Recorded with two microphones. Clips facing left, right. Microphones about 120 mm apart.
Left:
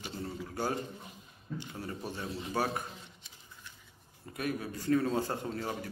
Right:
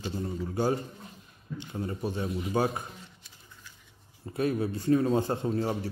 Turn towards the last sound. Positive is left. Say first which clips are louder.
# right 7 dB
turn(degrees=-30)  # may be behind; listen again after turning